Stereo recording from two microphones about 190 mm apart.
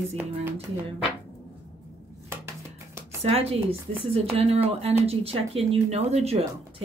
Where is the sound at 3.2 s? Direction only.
30° right (ahead or behind).